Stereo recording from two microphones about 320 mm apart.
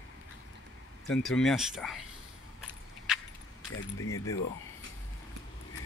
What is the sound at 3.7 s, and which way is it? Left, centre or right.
Speech, left.